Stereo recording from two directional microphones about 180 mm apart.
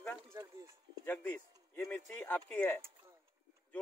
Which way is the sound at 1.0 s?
10° left (ahead or behind).